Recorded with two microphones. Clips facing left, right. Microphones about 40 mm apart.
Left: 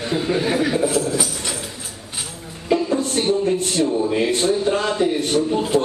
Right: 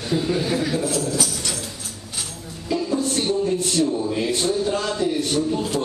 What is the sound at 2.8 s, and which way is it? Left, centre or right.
Music, left.